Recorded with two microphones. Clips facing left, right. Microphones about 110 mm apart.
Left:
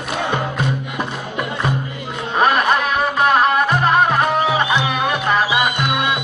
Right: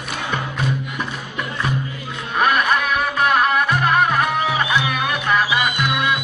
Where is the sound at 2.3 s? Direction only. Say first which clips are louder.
Left 2 dB; 30° left (ahead or behind).